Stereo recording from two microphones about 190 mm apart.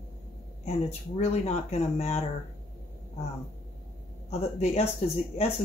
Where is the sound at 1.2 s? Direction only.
35° left (ahead or behind).